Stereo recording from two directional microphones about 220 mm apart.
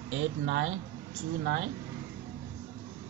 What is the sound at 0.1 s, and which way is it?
Speech, 60° right (ahead or behind).